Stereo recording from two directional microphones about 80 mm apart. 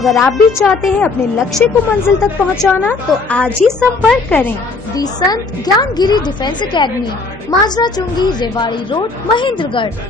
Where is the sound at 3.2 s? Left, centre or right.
Centre.